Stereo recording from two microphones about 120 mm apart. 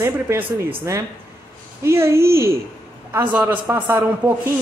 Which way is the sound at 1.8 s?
20° right (ahead or behind).